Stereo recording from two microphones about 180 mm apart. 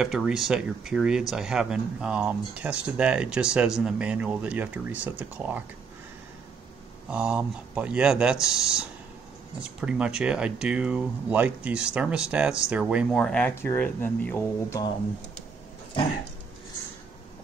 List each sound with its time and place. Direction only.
0.0 s speech: 5° right (ahead or behind)
7.1 s speech: 5° right (ahead or behind)
13.2 s speech: 5° left (ahead or behind)